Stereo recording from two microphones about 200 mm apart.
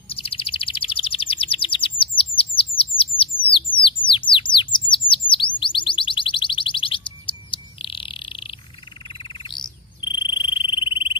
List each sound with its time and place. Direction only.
0.1 s bird: 30° left (ahead or behind)
9.1 s frog: 25° left (ahead or behind)